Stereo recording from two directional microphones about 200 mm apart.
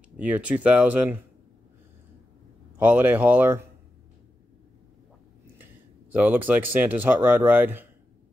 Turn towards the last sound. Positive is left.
turn(degrees=-10)  # may be behind; listen again after turning